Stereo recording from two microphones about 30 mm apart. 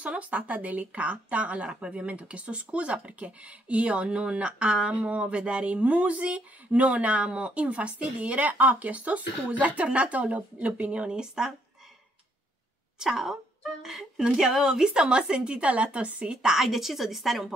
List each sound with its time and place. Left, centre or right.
0.0 s speech: right
11.1 s a woman's voice: right
13.0 s a woman's voice: right
15.6 s speech: right
16.6 s a woman's voice: centre